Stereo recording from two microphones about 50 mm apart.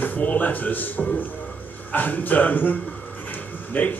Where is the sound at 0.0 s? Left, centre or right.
Left.